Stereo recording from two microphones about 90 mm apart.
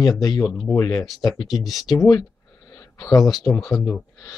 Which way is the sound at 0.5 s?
Centre (ahead or behind).